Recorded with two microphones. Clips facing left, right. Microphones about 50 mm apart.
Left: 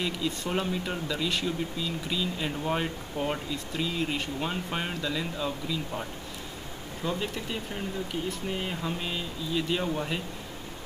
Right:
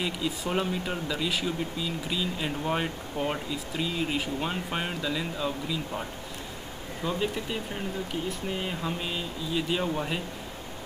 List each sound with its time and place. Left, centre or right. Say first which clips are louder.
0.0 s speech: even; centre
7.1 s speech: right 2 dB; centre